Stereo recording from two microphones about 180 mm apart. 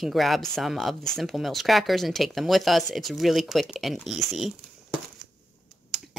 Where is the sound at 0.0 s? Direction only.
Centre (ahead or behind).